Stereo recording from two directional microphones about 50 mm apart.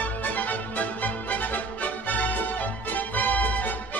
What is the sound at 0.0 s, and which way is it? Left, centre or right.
Music, left.